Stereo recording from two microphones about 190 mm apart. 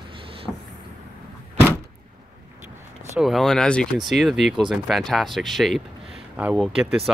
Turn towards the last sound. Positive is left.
turn(degrees=0)  # may be behind; listen again after turning